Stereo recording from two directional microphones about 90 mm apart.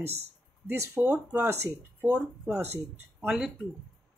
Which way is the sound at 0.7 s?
30° right (ahead or behind).